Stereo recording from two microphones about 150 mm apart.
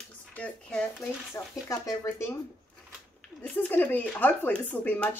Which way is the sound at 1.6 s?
20° left (ahead or behind).